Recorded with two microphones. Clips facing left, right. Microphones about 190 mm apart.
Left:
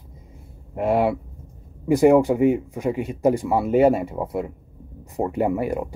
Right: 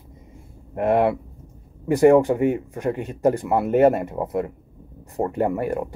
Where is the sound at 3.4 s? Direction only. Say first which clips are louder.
Right 1 dB; centre (ahead or behind).